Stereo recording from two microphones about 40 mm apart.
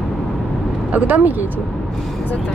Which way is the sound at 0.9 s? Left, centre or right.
Right.